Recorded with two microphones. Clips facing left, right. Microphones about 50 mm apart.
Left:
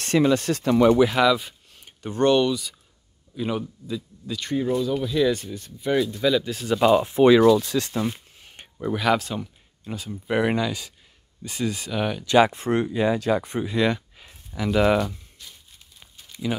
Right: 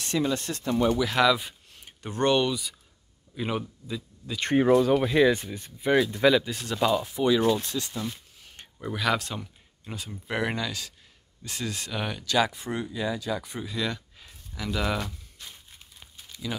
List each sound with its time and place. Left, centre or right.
0.0 s speech: left
1.1 s speech: centre
4.5 s speech: right
5.1 s speech: centre
6.3 s speech: centre
6.9 s speech: left
7.2 s speech: left
8.1 s a sound: left
8.8 s speech: centre
10.3 s speech: centre
12.3 s speech: left
12.6 s speech: left
14.1 s a sound: left
16.5 s speech: left